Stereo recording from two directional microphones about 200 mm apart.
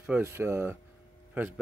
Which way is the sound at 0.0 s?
10° right (ahead or behind).